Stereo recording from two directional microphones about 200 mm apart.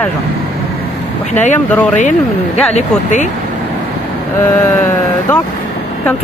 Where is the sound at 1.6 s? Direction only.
5° left (ahead or behind).